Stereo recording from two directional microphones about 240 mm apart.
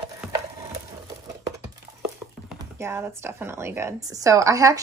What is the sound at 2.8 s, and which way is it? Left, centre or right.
A woman's voice, centre.